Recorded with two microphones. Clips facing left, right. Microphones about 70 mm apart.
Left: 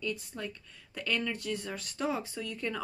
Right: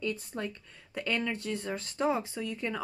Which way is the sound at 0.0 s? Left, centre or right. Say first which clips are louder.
Right 2 dB; right.